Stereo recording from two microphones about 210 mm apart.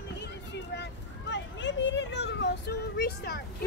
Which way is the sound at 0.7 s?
60° left (ahead or behind).